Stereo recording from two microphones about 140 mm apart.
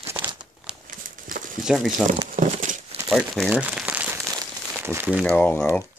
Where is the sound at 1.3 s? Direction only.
75° right (ahead or behind).